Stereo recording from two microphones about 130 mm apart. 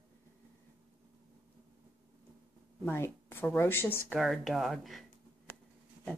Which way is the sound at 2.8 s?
20° left (ahead or behind).